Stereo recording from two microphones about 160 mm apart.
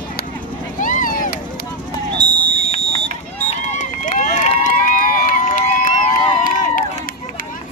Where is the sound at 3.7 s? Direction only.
50° left (ahead or behind).